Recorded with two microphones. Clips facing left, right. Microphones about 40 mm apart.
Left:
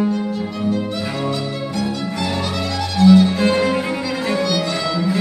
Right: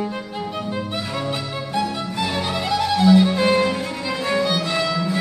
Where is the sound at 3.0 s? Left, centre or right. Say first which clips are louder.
Left 4 dB; centre.